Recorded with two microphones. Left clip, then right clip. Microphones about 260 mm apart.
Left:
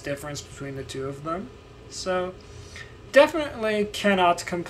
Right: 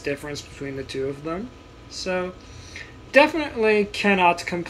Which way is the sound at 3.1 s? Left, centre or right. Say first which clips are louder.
Right 1 dB; centre.